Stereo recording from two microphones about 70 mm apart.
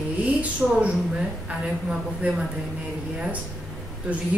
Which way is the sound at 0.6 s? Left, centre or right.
Centre.